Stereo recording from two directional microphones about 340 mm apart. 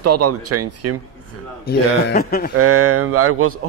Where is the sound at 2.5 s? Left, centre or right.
Right.